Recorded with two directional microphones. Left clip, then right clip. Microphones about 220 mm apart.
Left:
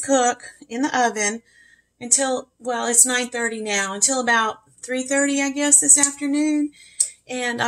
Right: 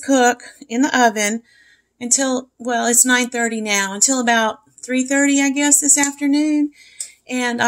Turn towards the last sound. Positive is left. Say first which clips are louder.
# right 4 dB
turn(degrees=-30)  # may be behind; listen again after turning